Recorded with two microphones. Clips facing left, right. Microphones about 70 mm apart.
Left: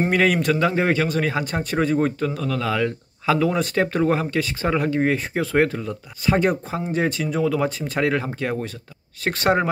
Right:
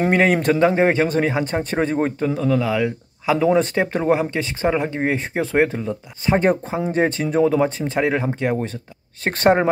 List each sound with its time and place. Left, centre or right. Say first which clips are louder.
0.1 s speech: right 2 dB; right